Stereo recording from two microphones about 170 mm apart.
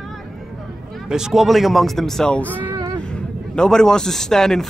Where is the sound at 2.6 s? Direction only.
25° right (ahead or behind).